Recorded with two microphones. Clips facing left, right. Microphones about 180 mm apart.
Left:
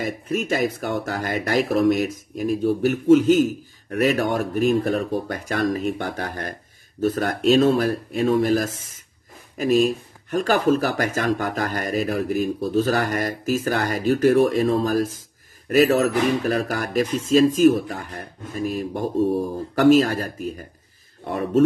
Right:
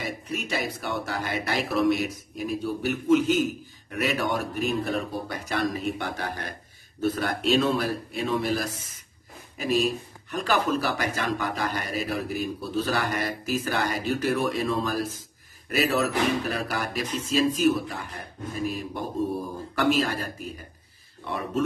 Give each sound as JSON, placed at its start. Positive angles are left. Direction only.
{"t": 0.5, "sound": "speech", "side_deg": 45}